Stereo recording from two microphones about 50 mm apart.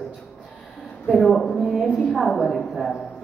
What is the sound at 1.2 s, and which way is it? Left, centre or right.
A man's voice, centre.